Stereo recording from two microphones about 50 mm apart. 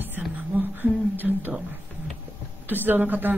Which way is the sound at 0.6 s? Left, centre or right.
Right.